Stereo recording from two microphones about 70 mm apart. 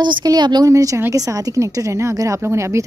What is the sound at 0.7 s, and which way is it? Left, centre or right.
A woman's voice, right.